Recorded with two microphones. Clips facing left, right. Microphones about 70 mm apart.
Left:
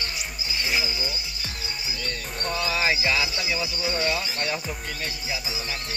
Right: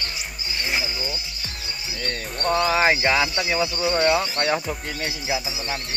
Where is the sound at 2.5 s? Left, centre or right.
Right.